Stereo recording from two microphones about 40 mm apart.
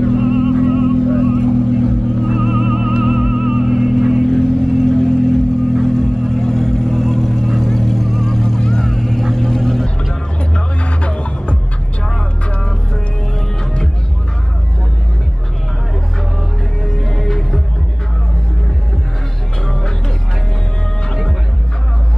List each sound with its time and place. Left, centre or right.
0.1 s music: centre
1.4 s vehicle: centre
3.0 s music: centre
4.3 s vehicle: centre
10.5 s music: left
16.8 s music: centre